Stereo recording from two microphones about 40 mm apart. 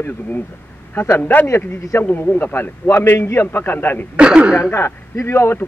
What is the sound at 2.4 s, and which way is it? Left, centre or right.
A man's voice, left.